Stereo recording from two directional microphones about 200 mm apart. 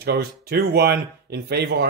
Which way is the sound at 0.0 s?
50° right (ahead or behind).